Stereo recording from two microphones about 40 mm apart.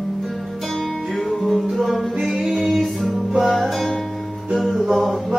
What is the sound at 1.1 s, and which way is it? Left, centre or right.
Music, centre.